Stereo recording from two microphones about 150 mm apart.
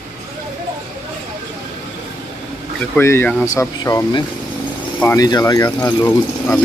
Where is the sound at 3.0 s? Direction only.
15° left (ahead or behind).